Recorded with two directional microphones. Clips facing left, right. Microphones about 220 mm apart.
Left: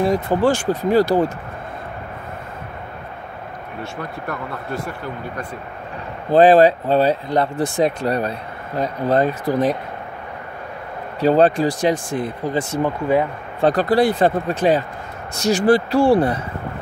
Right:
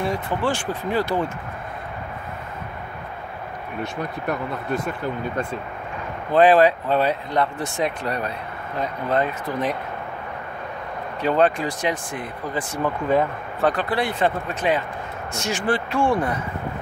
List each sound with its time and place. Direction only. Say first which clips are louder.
0.0 s speech: left 7 dB; 40° left (ahead or behind)
3.8 s speech: right 2 dB; 20° right (ahead or behind)
6.3 s speech: left 4 dB; 35° left (ahead or behind)
11.1 s speech: left 5 dB; 35° left (ahead or behind)
12.8 s speech: left 1 dB; 15° left (ahead or behind)
13.6 s speech: left 6 dB; 35° left (ahead or behind)